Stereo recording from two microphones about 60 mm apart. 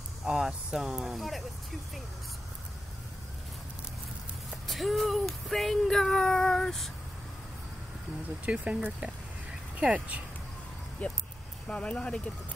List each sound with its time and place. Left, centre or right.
0.2 s speech: centre
4.6 s female singing: centre
8.5 s speech: centre
11.0 s speech: left